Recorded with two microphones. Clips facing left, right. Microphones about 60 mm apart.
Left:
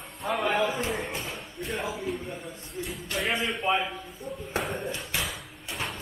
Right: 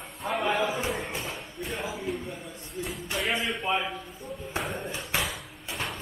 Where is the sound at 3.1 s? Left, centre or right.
Centre.